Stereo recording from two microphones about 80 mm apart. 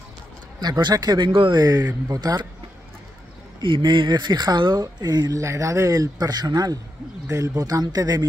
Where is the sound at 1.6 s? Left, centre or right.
Right.